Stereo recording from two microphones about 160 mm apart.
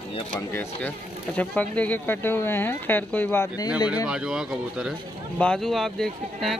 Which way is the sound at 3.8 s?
25° left (ahead or behind).